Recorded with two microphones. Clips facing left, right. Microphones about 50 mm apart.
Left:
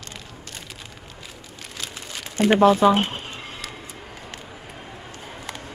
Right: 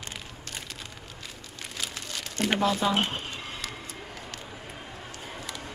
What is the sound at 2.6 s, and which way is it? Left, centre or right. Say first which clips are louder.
Speech: left 11 dB; left.